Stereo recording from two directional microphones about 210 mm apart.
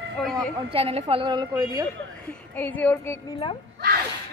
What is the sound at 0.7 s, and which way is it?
Speech, 30° right (ahead or behind).